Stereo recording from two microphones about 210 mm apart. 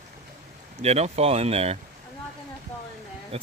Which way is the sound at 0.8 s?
30° right (ahead or behind).